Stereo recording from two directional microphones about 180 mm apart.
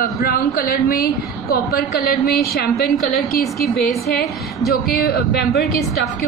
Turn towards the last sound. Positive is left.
turn(degrees=60)  # may be behind; listen again after turning